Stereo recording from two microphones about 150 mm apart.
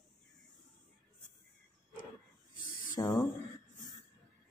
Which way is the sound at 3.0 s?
20° left (ahead or behind).